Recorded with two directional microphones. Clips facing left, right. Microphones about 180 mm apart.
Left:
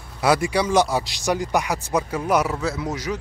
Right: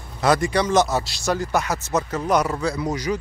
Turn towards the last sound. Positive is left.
turn(degrees=0)  # may be behind; listen again after turning